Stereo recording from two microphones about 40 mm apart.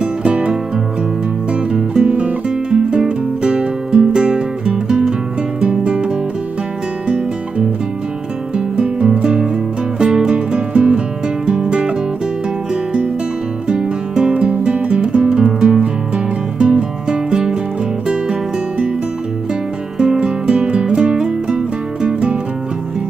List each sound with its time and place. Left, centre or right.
0.0 s music: right
8.5 s music: right
13.7 s music: right
20.0 s music: right